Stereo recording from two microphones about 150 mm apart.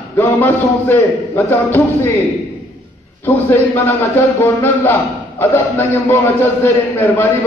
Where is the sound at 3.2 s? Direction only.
15° left (ahead or behind).